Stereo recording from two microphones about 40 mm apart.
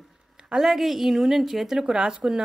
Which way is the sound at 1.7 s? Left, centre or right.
Centre.